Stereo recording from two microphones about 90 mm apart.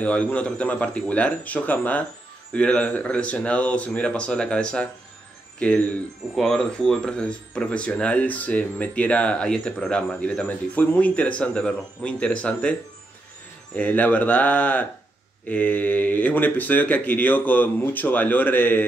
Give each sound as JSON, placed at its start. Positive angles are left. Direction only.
{"t": 0.0, "sound": "speech", "side_deg": 15}
{"t": 13.7, "sound": "speech", "side_deg": 20}